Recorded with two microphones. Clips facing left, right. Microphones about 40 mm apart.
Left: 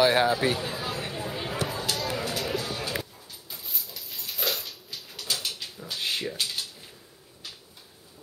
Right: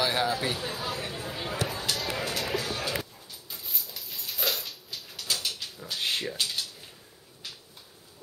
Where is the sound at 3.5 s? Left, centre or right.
Centre.